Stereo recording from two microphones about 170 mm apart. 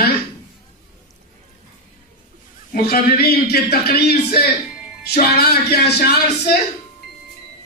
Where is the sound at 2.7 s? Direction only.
60° left (ahead or behind).